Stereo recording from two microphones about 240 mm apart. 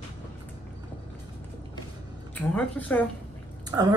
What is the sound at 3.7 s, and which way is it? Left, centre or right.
Speech, centre.